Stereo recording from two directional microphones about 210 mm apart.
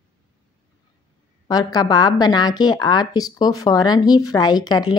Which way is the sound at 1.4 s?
20° left (ahead or behind).